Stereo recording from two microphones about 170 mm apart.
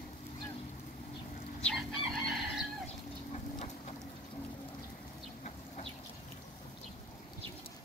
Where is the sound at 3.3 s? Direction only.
45° left (ahead or behind).